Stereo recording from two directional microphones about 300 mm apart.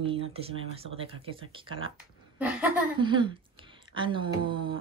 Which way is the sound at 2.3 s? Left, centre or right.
Centre.